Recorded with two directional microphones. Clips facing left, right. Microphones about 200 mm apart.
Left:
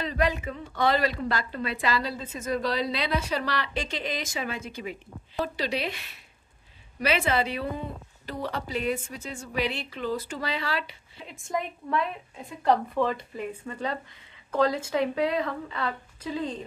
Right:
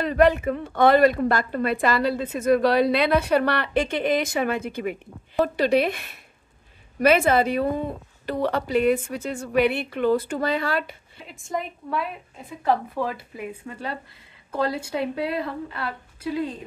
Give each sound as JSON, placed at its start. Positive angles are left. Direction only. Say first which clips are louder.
{"t": 0.0, "sound": "a woman's voice", "louder": "right 8 dB", "side_deg": -60}
{"t": 8.3, "sound": "a woman's voice", "louder": "right 8 dB", "side_deg": -60}
{"t": 11.2, "sound": "a woman's voice", "louder": "right 1 dB", "side_deg": 0}